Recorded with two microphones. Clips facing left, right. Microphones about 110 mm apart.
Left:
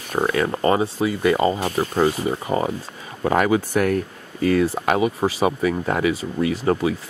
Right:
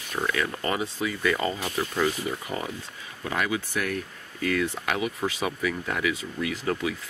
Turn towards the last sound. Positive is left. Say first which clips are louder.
# left 8 dB
turn(degrees=30)  # may be behind; listen again after turning